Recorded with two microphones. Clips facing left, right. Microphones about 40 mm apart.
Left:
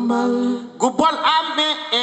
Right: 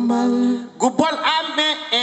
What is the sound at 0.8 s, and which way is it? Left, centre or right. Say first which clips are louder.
Mantra: left 1 dB; left.